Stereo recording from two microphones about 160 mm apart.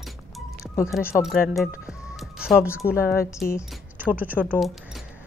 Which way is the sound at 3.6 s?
10° right (ahead or behind).